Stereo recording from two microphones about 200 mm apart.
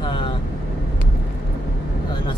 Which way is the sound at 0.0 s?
25° left (ahead or behind).